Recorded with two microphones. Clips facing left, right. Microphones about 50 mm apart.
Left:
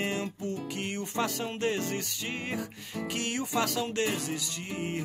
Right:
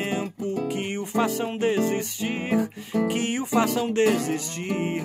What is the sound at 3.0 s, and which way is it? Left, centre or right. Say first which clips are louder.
Speech: right 7 dB; right.